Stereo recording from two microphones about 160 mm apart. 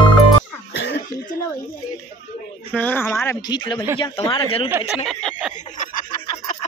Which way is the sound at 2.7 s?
10° left (ahead or behind).